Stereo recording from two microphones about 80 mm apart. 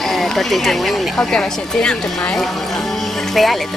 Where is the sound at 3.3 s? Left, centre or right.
Centre.